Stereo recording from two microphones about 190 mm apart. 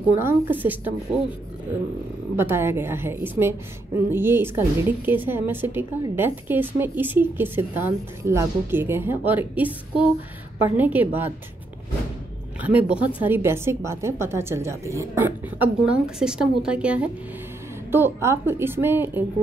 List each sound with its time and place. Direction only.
0.2 s a woman's voice: 10° right (ahead or behind)
2.3 s a woman's voice: 10° right (ahead or behind)
12.6 s a woman's voice: 5° right (ahead or behind)